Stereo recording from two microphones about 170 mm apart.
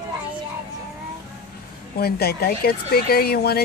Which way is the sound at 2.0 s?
65° left (ahead or behind).